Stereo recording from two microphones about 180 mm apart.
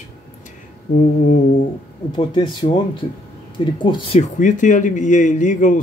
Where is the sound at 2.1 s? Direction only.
25° left (ahead or behind).